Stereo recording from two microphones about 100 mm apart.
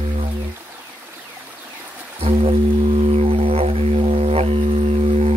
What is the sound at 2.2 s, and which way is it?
Music, 70° right (ahead or behind).